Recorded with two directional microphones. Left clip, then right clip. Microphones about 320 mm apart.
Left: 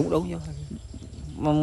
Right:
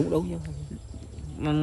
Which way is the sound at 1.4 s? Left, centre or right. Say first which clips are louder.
Left 4 dB; centre.